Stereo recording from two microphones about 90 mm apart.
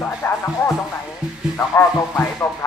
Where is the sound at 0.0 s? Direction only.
25° left (ahead or behind).